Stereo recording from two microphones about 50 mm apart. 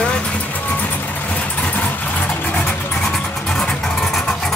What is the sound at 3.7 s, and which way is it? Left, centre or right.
Vehicle, left.